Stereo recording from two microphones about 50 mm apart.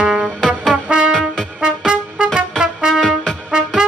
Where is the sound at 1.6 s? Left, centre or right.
Centre.